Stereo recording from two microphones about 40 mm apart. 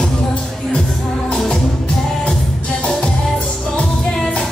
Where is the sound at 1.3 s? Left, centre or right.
Centre.